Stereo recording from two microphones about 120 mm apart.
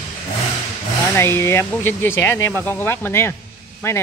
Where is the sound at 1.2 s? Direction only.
20° left (ahead or behind).